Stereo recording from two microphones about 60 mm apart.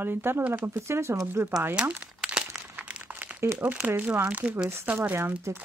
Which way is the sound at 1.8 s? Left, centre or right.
Centre.